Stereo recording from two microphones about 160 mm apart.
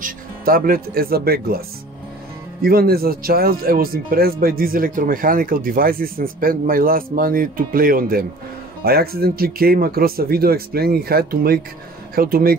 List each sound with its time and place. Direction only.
0.0 s speech: 65° right (ahead or behind)
2.6 s speech: 70° right (ahead or behind)